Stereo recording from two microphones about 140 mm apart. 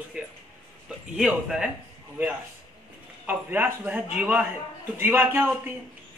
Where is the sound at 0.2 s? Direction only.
5° right (ahead or behind).